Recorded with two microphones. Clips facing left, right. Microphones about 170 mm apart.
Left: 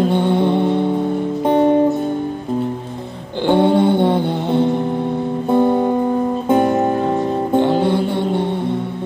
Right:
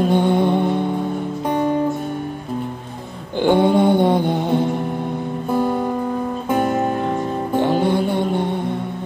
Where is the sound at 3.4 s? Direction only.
15° right (ahead or behind).